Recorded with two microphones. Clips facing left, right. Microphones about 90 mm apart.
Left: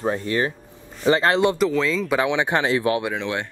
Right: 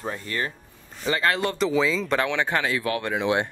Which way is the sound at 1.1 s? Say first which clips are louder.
Left 6 dB; 25° left (ahead or behind).